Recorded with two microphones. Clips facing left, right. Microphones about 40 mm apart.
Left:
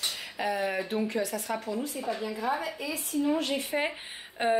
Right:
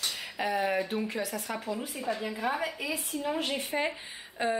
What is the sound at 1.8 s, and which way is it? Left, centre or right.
A woman's voice, centre.